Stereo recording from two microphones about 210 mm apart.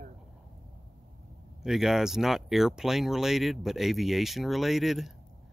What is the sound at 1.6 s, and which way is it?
Speech, centre (ahead or behind).